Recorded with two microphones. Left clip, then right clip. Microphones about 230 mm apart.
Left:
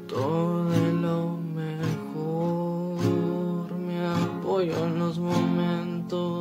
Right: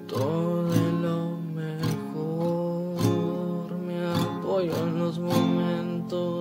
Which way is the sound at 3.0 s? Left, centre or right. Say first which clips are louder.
Left 1 dB; right.